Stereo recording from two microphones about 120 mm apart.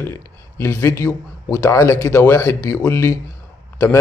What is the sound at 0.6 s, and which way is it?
A man's voice, 20° left (ahead or behind).